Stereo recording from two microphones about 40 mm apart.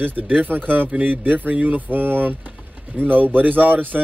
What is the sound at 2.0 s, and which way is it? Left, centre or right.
Speech, right.